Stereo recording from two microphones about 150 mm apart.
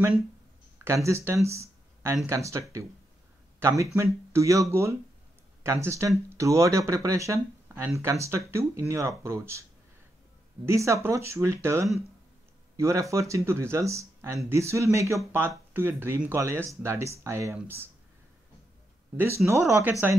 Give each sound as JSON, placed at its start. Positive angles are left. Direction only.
{"t": 0.8, "sound": "speech", "side_deg": -20}
{"t": 19.1, "sound": "speech", "side_deg": -15}